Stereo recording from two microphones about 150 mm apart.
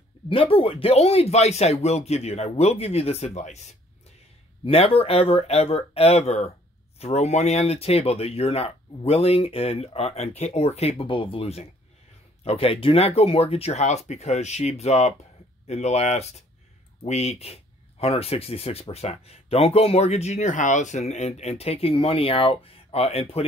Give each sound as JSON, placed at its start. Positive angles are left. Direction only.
{"t": 0.3, "sound": "speech", "side_deg": 35}
{"t": 4.6, "sound": "speech", "side_deg": 40}